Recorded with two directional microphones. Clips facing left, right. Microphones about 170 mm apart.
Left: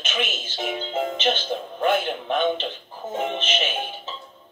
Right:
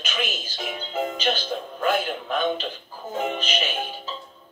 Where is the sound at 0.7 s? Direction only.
25° left (ahead or behind).